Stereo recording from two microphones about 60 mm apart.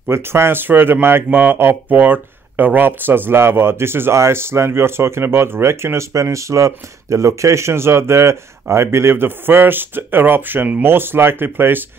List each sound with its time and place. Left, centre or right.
0.1 s speech: right
6.1 s speech: right